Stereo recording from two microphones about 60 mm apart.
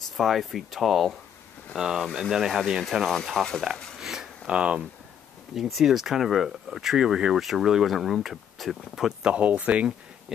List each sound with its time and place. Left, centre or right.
0.2 s speech: centre
4.0 s a sound: centre
5.5 s speech: centre
9.3 s speech: right